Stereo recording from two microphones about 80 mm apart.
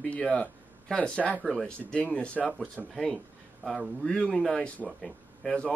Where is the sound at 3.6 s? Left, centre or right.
Centre.